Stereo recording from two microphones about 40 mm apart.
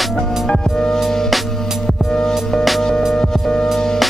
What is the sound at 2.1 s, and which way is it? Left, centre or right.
Music, centre.